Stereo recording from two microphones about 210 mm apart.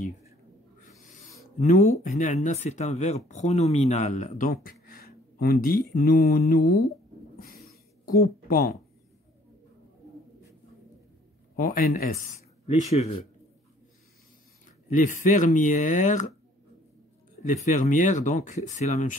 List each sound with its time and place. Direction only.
1.6 s speech: 40° left (ahead or behind)
5.9 s mantra: 45° left (ahead or behind)
7.3 s a sound: 45° left (ahead or behind)
11.5 s speech: 40° left (ahead or behind)
14.9 s speech: 35° left (ahead or behind)
17.4 s speech: 35° left (ahead or behind)